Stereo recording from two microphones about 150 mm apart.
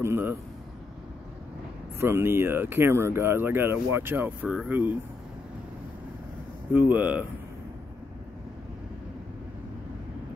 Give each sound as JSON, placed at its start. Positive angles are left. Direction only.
{"t": 0.0, "sound": "speech", "side_deg": -15}
{"t": 2.0, "sound": "speech", "side_deg": -15}
{"t": 6.7, "sound": "speech", "side_deg": -15}